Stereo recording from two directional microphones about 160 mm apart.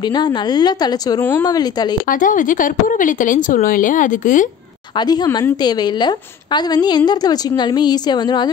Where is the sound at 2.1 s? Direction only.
55° left (ahead or behind).